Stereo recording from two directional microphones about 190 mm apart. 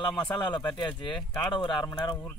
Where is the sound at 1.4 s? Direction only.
25° left (ahead or behind).